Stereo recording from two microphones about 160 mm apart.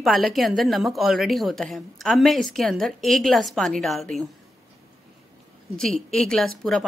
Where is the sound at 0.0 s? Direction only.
Centre (ahead or behind).